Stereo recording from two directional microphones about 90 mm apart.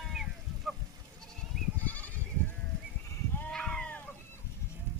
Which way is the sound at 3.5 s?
10° left (ahead or behind).